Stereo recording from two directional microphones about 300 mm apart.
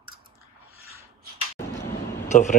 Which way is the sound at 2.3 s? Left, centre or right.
Left.